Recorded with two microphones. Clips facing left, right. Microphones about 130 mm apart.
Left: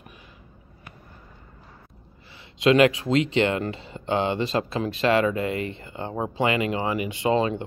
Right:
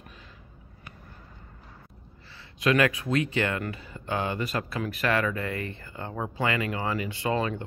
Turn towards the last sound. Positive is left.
turn(degrees=20)  # may be behind; listen again after turning